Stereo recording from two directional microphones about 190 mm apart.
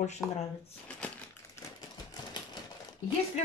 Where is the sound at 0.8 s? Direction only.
5° left (ahead or behind).